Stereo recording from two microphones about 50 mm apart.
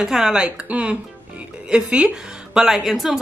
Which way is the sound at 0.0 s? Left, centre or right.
Centre.